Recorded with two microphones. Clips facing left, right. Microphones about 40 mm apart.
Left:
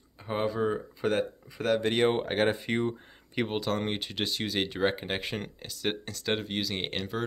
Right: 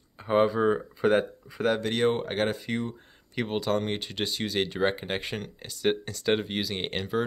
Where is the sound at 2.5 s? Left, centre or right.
Left.